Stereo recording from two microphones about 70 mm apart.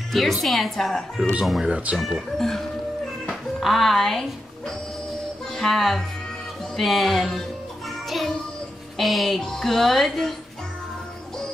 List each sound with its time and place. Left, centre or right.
0.1 s speech: centre
1.7 s speech: centre
2.0 s speech: centre
5.5 s speech: centre
8.9 s speech: centre